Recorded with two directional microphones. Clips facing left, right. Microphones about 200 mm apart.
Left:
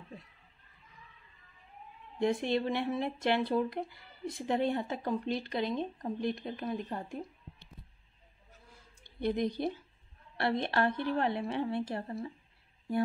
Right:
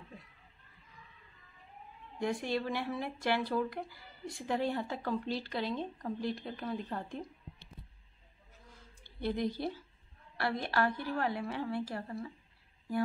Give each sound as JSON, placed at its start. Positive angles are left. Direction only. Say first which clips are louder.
{"t": 2.1, "sound": "speech", "louder": "left 4 dB", "side_deg": 20}
{"t": 9.0, "sound": "a woman's voice", "louder": "left 3 dB", "side_deg": 20}